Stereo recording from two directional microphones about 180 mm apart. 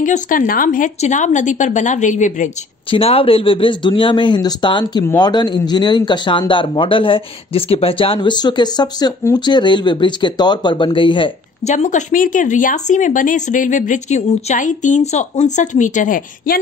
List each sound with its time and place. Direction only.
0.0 s speech: 45° left (ahead or behind)
2.9 s speech: 30° left (ahead or behind)
11.7 s speech: 45° left (ahead or behind)